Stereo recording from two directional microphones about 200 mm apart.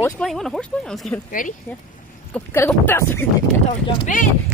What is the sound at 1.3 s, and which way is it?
Speech, 40° left (ahead or behind).